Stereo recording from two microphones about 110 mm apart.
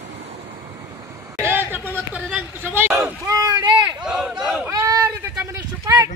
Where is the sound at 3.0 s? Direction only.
30° right (ahead or behind).